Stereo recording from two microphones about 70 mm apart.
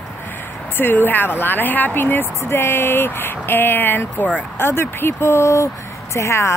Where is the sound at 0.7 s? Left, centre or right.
Left.